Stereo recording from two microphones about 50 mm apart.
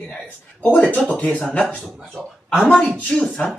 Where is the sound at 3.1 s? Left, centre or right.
Centre.